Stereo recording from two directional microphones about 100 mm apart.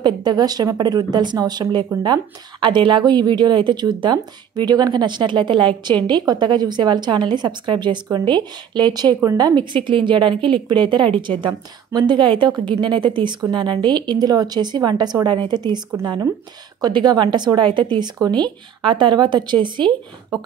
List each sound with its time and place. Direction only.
0.0 s a woman's voice: 45° right (ahead or behind)
16.8 s a woman's voice: 45° right (ahead or behind)